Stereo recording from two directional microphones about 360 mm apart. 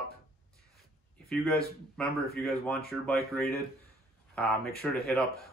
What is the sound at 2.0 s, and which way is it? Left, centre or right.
Speech, centre.